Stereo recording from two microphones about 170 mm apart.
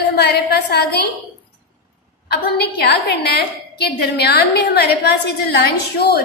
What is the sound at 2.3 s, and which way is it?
A woman's voice, 70° left (ahead or behind).